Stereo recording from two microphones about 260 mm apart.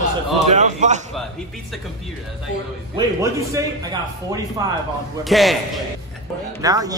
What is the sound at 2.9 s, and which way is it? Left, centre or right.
Speech, centre.